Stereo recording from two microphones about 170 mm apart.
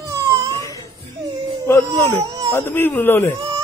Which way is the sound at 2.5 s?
15° left (ahead or behind).